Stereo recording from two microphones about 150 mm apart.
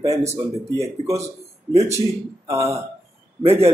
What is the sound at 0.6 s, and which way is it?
Speech, 20° right (ahead or behind).